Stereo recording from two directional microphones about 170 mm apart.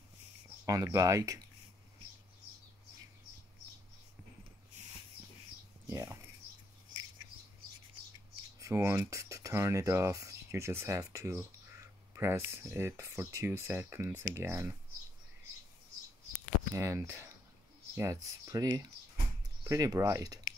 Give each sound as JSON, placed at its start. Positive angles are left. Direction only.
{"t": 0.7, "sound": "speech", "side_deg": -20}
{"t": 5.9, "sound": "a sound", "side_deg": -15}
{"t": 8.5, "sound": "speech", "side_deg": -15}
{"t": 16.7, "sound": "speech", "side_deg": -15}